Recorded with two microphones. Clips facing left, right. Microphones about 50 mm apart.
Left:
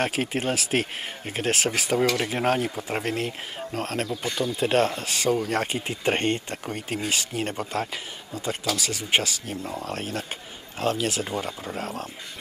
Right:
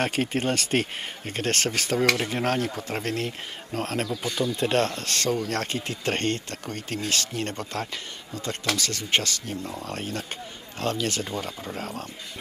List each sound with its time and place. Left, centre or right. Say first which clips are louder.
0.0 s speech: even; centre